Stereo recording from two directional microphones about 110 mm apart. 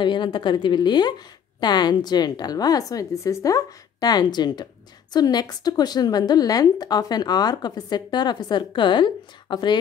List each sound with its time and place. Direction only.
0.0 s a woman's voice: 45° left (ahead or behind)